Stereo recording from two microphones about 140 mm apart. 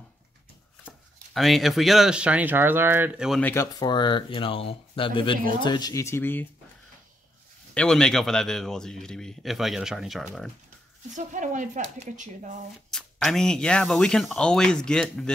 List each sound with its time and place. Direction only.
1.3 s speech: centre (ahead or behind)
3.3 s speech: 10° left (ahead or behind)
3.5 s speech: 25° left (ahead or behind)
7.7 s speech: 5° left (ahead or behind)
11.1 s speech: 65° right (ahead or behind)
12.9 s speech: 5° left (ahead or behind)